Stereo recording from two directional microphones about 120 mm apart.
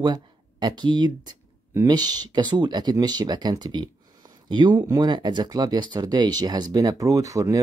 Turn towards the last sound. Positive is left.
turn(degrees=-25)  # may be behind; listen again after turning